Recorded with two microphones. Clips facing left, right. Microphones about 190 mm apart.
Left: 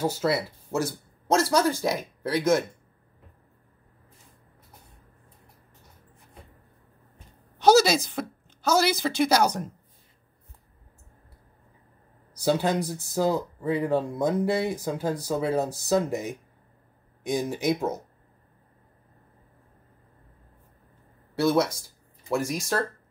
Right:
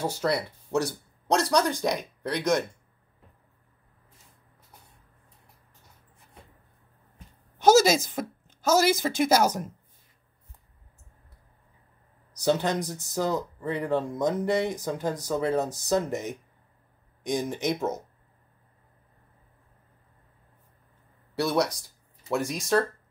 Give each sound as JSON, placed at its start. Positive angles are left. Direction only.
{"t": 0.0, "sound": "speech", "side_deg": 5}
{"t": 7.5, "sound": "a sound", "side_deg": -50}
{"t": 8.8, "sound": "speech", "side_deg": -45}
{"t": 9.3, "sound": "speech", "side_deg": -5}
{"t": 12.4, "sound": "speech", "side_deg": 10}
{"t": 21.4, "sound": "speech", "side_deg": 0}